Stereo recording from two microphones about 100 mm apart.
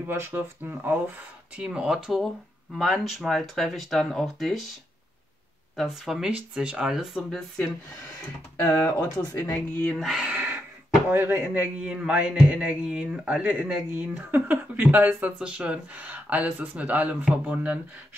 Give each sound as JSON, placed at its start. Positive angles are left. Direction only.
{"t": 0.0, "sound": "speech", "side_deg": -20}
{"t": 5.8, "sound": "speech", "side_deg": -5}
{"t": 8.5, "sound": "speech", "side_deg": 25}
{"t": 9.9, "sound": "speech", "side_deg": 0}
{"t": 10.2, "sound": "a sound", "side_deg": -15}
{"t": 11.1, "sound": "speech", "side_deg": -20}
{"t": 13.8, "sound": "speech", "side_deg": -25}